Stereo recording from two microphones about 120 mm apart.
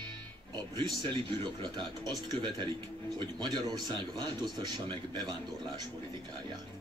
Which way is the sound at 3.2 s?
35° right (ahead or behind).